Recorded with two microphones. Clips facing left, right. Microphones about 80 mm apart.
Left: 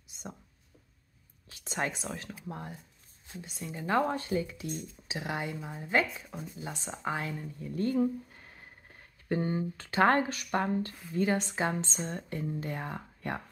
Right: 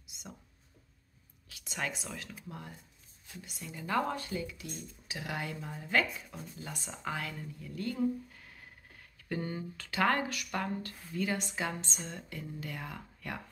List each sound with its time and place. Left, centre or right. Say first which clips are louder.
1.5 s speech: left 4 dB; left